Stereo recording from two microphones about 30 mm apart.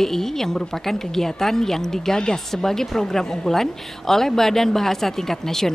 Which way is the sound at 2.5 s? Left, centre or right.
Centre.